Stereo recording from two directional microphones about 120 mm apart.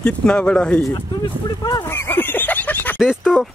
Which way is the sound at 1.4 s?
35° left (ahead or behind).